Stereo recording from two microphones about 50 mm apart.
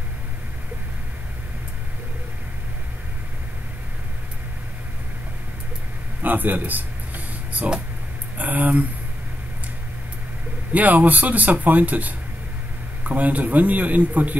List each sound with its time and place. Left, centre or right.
6.2 s speech: right
10.7 s speech: right